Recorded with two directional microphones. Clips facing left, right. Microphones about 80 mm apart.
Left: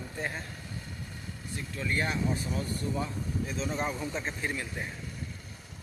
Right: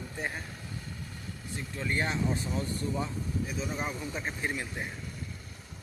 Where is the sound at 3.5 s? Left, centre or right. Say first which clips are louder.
Left 2 dB; centre.